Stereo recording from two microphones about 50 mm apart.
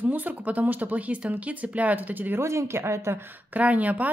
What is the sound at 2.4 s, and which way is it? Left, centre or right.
Speech, right.